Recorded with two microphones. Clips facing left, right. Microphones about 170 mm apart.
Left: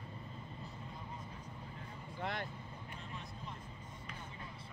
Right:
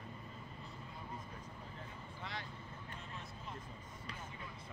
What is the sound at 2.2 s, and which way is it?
Vehicle, 55° left (ahead or behind).